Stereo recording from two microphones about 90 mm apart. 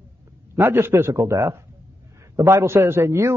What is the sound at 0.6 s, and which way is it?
A man's voice, 25° right (ahead or behind).